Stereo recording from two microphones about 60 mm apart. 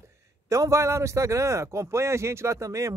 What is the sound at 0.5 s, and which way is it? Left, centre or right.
Speech, right.